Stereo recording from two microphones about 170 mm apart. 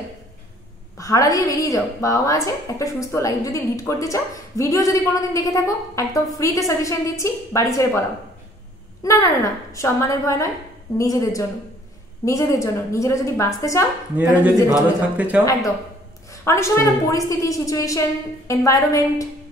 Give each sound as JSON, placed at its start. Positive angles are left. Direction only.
{"t": 0.9, "sound": "a woman's voice", "side_deg": 20}
{"t": 9.0, "sound": "a woman's voice", "side_deg": 15}
{"t": 14.1, "sound": "a man's voice", "side_deg": -10}
{"t": 16.4, "sound": "a woman's voice", "side_deg": 15}